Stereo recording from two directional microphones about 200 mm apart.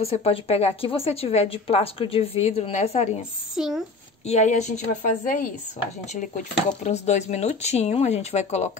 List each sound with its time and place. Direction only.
0.0 s a woman's voice: 30° left (ahead or behind)
3.5 s a child's voice: centre (ahead or behind)
4.3 s speech: 35° left (ahead or behind)